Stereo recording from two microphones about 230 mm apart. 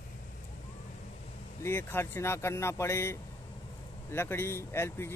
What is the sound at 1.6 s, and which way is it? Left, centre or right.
Speech, centre.